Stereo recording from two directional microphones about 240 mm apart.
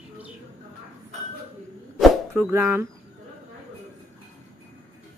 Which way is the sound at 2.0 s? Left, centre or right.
Centre.